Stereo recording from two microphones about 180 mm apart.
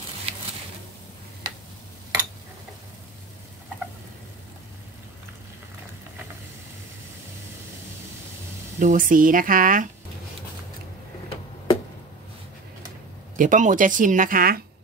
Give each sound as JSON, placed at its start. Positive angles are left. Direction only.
{"t": 8.7, "sound": "speech", "side_deg": -45}
{"t": 11.2, "sound": "tick-tock", "side_deg": 30}
{"t": 13.4, "sound": "speech", "side_deg": -45}